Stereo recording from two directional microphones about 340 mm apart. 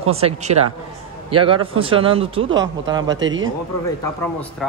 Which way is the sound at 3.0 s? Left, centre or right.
Right.